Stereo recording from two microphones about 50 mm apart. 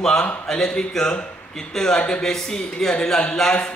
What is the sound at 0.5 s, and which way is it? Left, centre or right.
A man's voice, centre.